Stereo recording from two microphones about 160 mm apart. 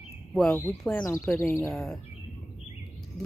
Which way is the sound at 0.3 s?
5° left (ahead or behind).